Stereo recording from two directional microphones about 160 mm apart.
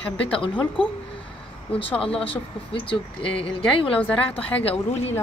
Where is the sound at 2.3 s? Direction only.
35° left (ahead or behind).